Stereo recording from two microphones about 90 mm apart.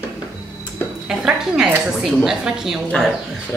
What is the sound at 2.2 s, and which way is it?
Speech, 5° right (ahead or behind).